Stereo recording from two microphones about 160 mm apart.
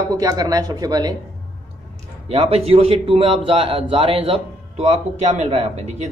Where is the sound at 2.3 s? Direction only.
40° right (ahead or behind).